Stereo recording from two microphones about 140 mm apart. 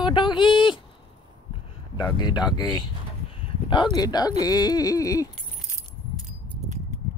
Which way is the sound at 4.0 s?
30° left (ahead or behind).